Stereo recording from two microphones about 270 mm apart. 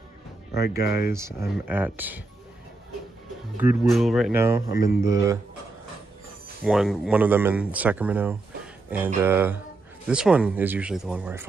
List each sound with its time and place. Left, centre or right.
0.5 s speech: left
1.1 s speech: centre
3.5 s speech: centre
6.6 s speech: centre